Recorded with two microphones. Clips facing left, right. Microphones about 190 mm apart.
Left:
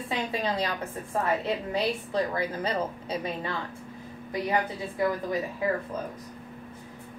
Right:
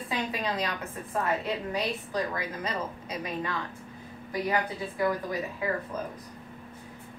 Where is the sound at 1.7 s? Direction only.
30° left (ahead or behind).